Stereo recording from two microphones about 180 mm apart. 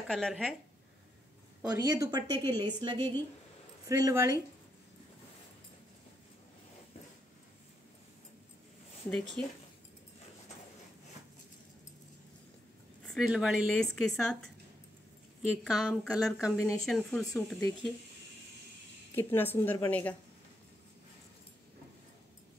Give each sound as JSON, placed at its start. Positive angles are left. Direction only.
{"t": 0.1, "sound": "speech", "side_deg": 0}
{"t": 1.6, "sound": "a woman's voice", "side_deg": -15}
{"t": 9.1, "sound": "speech", "side_deg": 5}
{"t": 13.0, "sound": "speech", "side_deg": 0}
{"t": 15.6, "sound": "speech", "side_deg": 0}
{"t": 19.1, "sound": "a woman's voice", "side_deg": 10}